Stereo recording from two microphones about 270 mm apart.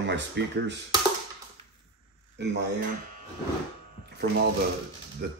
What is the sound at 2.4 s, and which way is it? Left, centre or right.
Speech, right.